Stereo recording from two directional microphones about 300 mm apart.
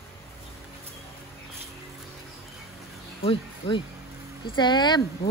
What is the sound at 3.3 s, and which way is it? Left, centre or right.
Speech, centre.